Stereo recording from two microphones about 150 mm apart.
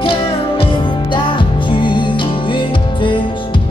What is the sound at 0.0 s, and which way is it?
Music, 40° left (ahead or behind).